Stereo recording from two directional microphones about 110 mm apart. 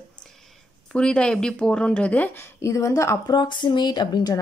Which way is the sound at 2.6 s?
25° left (ahead or behind).